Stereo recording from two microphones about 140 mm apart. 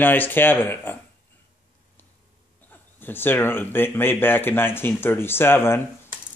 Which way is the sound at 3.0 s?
15° left (ahead or behind).